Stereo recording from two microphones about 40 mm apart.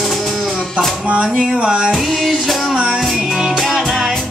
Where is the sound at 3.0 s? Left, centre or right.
Centre.